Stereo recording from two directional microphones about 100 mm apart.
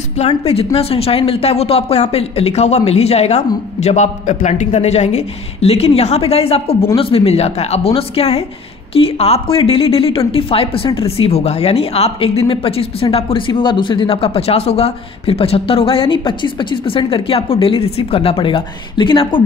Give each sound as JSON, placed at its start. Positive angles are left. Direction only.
{"t": 0.7, "sound": "speech", "side_deg": 80}
{"t": 4.7, "sound": "speech", "side_deg": 90}